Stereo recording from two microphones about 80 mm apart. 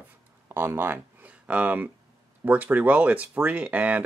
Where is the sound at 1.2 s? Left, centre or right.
Centre.